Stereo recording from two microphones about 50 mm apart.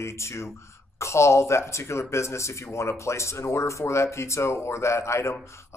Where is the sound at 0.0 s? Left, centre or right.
Left.